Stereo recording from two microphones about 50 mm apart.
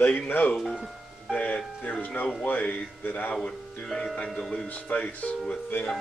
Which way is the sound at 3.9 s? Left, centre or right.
Centre.